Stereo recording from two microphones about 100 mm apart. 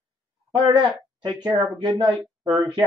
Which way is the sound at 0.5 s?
50° right (ahead or behind).